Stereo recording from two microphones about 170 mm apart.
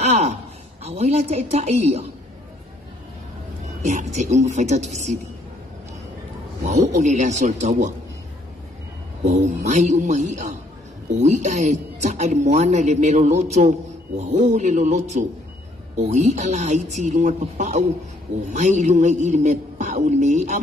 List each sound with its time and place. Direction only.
0.0 s a sound: 40° right (ahead or behind)
0.8 s a woman's voice: 40° right (ahead or behind)
3.8 s speech: 45° right (ahead or behind)
6.6 s speech: 45° right (ahead or behind)
9.2 s speech: 45° right (ahead or behind)